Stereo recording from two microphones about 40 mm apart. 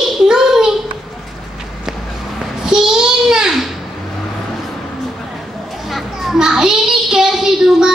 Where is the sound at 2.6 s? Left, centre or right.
Centre.